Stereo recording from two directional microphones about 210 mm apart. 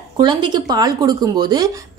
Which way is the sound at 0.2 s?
20° right (ahead or behind).